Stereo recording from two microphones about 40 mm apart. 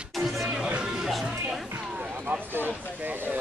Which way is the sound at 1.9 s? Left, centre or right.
Right.